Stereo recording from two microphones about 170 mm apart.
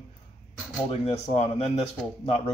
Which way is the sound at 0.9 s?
35° left (ahead or behind).